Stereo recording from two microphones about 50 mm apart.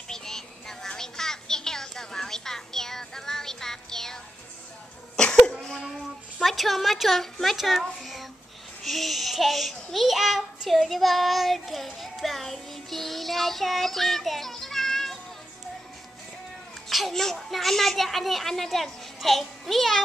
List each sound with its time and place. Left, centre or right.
0.1 s music: centre
5.1 s cough: centre
5.6 s child singing: centre
6.4 s a child's voice: centre
16.9 s a child's voice: centre